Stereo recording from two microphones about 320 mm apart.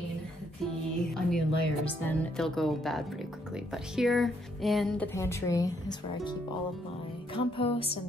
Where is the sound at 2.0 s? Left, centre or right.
Centre.